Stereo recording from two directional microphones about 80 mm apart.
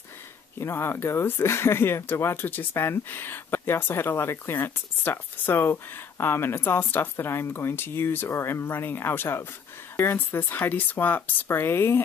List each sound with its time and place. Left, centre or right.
0.6 s speech: left